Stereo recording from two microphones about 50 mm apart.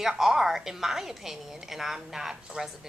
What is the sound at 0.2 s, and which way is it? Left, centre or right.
A woman's voice, centre.